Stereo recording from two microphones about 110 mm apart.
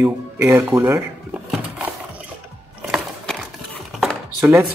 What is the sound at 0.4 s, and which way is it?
Speech, 25° right (ahead or behind).